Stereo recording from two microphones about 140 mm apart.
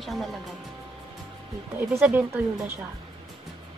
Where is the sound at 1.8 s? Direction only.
15° right (ahead or behind).